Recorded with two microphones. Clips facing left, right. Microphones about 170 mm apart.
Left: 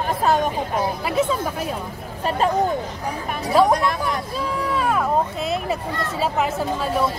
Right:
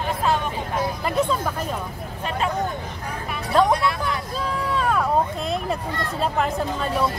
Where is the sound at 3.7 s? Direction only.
45° left (ahead or behind).